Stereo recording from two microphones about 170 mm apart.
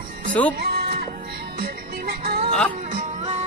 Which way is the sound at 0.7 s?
65° right (ahead or behind).